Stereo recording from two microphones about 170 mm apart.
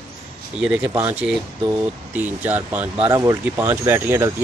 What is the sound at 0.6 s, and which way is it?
Speech, 10° right (ahead or behind).